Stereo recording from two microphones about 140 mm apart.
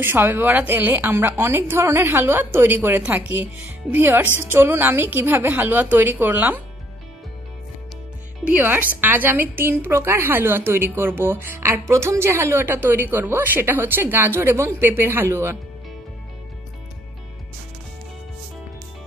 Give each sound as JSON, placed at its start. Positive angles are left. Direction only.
{"t": 0.0, "sound": "a woman's voice", "side_deg": -15}
{"t": 8.5, "sound": "a woman's voice", "side_deg": -15}